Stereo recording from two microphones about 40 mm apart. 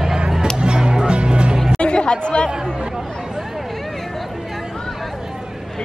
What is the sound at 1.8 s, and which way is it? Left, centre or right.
Chatter, left.